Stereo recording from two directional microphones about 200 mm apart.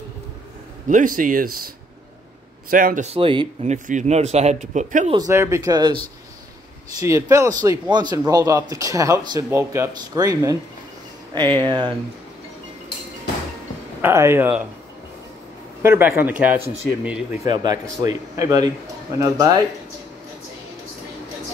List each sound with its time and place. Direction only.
0.8 s speech: 40° right (ahead or behind)
2.7 s speech: 45° right (ahead or behind); by 3.7 s 25° right (ahead or behind)
3.7 s speech: 40° right (ahead or behind)
5.1 s speech: 15° right (ahead or behind)
7.0 s speech: 15° right (ahead or behind)
14.0 s speech: 10° right (ahead or behind)
15.8 s speech: 10° right (ahead or behind)
17.5 s speech: 20° right (ahead or behind)